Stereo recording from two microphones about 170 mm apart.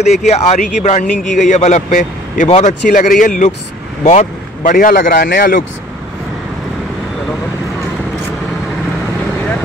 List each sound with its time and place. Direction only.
0.0 s a man's voice: 40° left (ahead or behind); by 5.6 s 70° left (ahead or behind)